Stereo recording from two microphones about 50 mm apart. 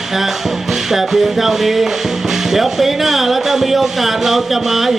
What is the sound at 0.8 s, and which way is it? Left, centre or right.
Speech, centre.